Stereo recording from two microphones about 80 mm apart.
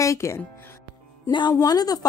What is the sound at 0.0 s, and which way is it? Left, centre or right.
Speech, left.